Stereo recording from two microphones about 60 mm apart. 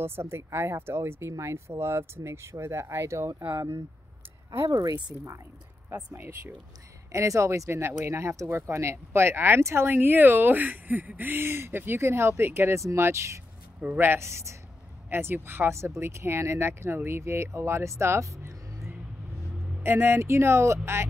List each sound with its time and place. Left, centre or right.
0.0 s speech: right
4.6 s speech: right
7.2 s speech: right
7.8 s speech: right
8.6 s speech: right
9.8 s speech: right
13.7 s speech: right
14.2 s speech: right
15.0 s speech: right
15.7 s speech: right
19.8 s speech: right